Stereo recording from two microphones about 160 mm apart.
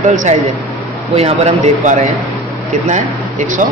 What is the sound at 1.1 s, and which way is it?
Speech, 40° right (ahead or behind).